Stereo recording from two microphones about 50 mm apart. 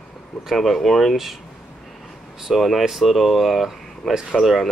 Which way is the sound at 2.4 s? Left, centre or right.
Centre.